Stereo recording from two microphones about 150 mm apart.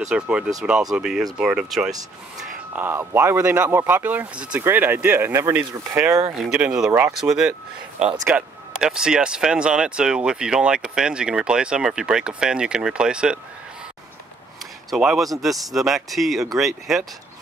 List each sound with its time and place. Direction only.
0.1 s speech: 5° right (ahead or behind)
6.9 s speech: 20° right (ahead or behind)
7.2 s speech: centre (ahead or behind)
14.9 s speech: centre (ahead or behind)